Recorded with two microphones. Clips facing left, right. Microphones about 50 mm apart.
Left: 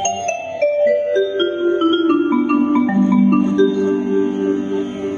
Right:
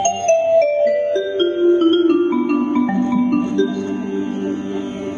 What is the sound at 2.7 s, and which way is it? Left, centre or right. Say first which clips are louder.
Music: left 3 dB; centre.